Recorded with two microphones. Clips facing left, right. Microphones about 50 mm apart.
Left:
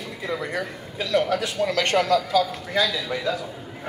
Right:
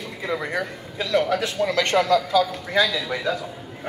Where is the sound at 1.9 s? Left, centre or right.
Right.